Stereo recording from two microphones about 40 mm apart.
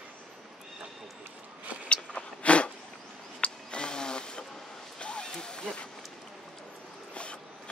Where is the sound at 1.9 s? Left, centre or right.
Left.